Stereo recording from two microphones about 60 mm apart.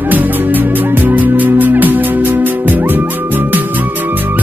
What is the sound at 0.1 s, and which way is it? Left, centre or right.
Music, right.